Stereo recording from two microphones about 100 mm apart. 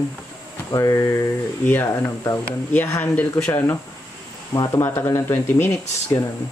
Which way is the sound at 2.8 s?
20° left (ahead or behind).